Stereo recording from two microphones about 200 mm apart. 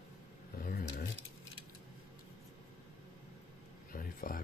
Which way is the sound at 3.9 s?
45° left (ahead or behind).